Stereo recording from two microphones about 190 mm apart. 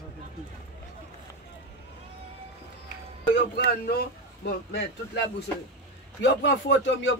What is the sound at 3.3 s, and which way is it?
Speech, 55° left (ahead or behind).